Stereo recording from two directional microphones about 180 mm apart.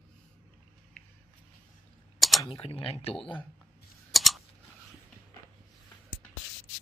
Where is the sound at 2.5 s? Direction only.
30° left (ahead or behind).